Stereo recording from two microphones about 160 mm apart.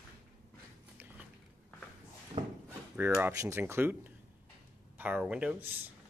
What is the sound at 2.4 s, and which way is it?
Speech, 35° right (ahead or behind).